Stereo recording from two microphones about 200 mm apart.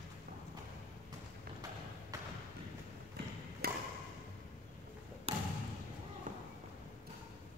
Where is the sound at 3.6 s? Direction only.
50° right (ahead or behind).